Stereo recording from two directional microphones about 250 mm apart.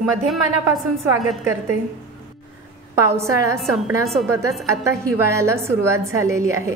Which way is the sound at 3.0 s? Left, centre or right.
Centre.